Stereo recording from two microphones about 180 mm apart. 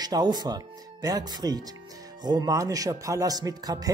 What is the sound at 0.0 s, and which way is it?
Speech, 20° right (ahead or behind).